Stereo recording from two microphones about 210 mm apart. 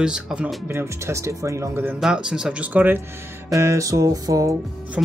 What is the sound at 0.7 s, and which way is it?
Speech, 15° right (ahead or behind).